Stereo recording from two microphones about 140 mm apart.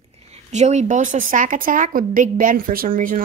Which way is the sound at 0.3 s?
55° right (ahead or behind).